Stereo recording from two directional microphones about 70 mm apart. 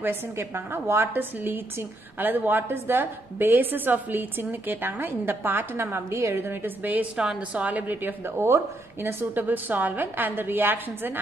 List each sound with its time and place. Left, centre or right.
0.0 s a woman's voice: right
7.2 s a woman's voice: centre; by 11.1 s right